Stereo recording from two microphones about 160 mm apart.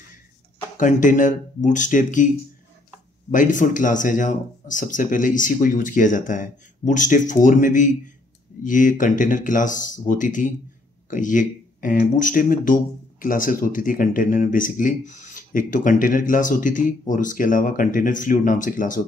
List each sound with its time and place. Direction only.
0.7 s speech: 55° left (ahead or behind)
3.3 s speech: 55° left (ahead or behind)